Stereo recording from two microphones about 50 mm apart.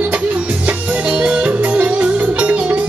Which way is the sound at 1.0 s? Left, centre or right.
Right.